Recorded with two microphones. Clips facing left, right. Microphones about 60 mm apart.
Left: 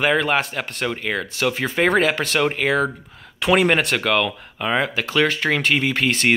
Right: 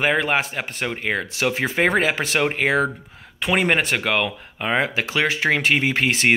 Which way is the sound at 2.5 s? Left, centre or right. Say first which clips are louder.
Even; right.